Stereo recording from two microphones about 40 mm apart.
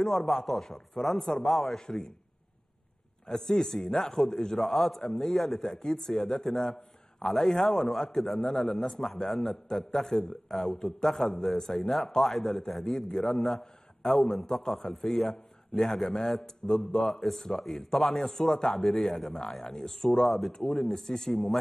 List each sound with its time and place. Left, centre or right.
0.0 s a man's voice: centre
3.3 s a man's voice: centre
9.5 s a man's voice: centre